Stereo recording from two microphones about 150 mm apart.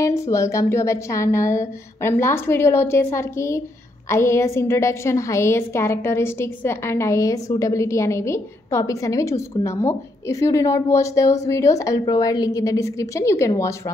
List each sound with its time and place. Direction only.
0.0 s a woman's voice: 20° left (ahead or behind)